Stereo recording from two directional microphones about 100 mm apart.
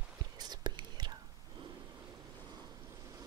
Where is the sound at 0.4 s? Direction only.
45° right (ahead or behind).